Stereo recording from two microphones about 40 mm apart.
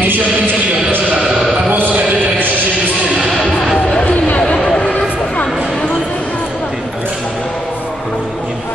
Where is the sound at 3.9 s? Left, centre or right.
Left.